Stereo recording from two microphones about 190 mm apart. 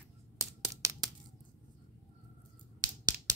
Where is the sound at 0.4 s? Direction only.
15° right (ahead or behind).